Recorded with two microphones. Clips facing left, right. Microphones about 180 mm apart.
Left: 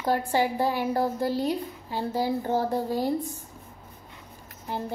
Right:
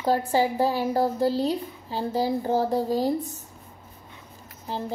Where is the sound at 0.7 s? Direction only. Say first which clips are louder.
Right 2 dB; 40° right (ahead or behind).